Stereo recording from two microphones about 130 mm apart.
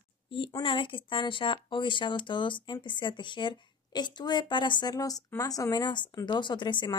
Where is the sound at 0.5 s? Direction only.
35° left (ahead or behind).